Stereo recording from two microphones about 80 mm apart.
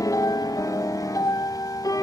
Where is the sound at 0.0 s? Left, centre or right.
Left.